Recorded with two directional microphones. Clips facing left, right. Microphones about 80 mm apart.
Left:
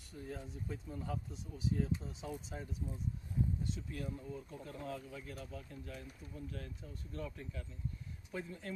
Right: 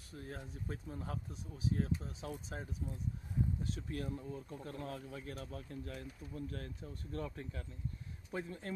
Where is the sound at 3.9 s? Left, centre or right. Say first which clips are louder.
Right 2 dB; right.